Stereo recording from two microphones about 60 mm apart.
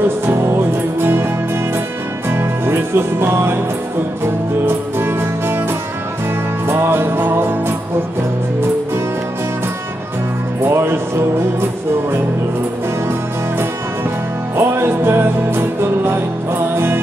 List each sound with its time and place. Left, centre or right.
0.3 s music: right
4.6 s music: right
6.7 s music: right
10.6 s music: right
14.6 s music: right